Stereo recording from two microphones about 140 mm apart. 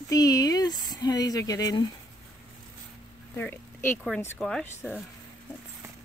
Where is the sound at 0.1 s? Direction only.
25° left (ahead or behind).